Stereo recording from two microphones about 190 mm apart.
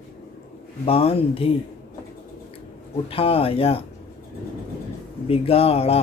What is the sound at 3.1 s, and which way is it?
Speech, 30° left (ahead or behind).